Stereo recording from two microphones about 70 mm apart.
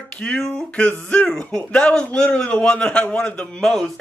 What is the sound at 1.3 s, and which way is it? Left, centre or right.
Speech, centre.